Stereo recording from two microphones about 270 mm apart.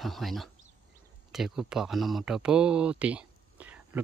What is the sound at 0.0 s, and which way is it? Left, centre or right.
Speech, centre.